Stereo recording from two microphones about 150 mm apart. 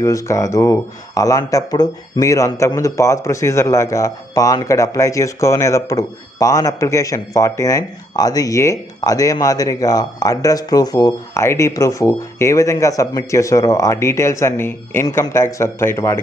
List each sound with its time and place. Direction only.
0.0 s speech: 20° left (ahead or behind)